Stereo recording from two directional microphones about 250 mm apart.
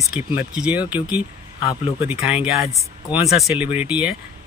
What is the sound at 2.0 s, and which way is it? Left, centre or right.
Speech, centre.